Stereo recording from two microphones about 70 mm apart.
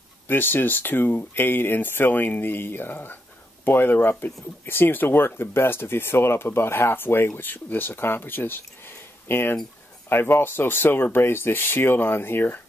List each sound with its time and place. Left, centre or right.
0.3 s speech: left